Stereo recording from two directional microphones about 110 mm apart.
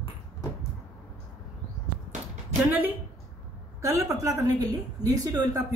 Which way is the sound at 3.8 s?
30° right (ahead or behind).